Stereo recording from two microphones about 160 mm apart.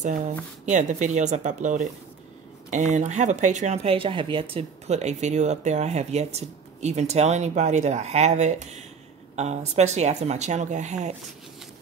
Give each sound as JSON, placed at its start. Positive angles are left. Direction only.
{"t": 0.0, "sound": "speech", "side_deg": -50}